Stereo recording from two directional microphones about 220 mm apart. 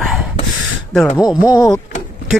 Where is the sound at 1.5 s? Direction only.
15° left (ahead or behind).